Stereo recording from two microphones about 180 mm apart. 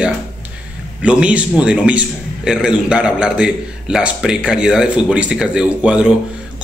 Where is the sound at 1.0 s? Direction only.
5° right (ahead or behind).